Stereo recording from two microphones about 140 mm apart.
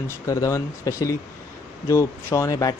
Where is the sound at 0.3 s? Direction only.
25° left (ahead or behind).